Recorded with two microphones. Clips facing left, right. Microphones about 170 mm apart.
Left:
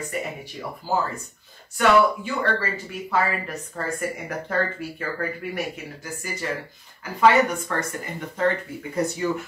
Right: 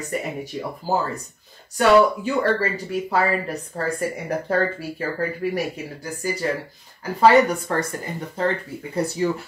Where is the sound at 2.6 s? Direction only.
35° right (ahead or behind).